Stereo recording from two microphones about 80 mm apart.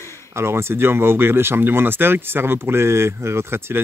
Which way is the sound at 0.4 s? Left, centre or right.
Right.